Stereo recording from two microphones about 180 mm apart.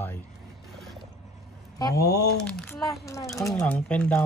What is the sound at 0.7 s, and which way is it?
Mechanisms, centre (ahead or behind).